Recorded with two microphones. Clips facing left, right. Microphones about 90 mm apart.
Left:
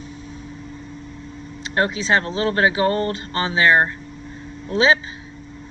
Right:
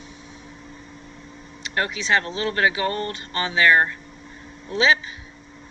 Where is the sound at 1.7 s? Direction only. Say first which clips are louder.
Left 3 dB; 30° left (ahead or behind).